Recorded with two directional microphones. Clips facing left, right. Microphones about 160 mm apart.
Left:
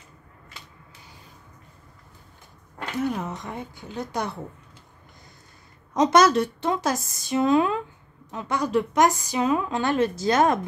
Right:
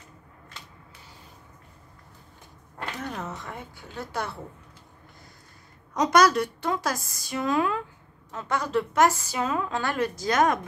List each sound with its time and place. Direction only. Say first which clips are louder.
3.0 s a woman's voice: left 10 dB; 10° left (ahead or behind)
5.9 s a woman's voice: left 2 dB; 25° left (ahead or behind)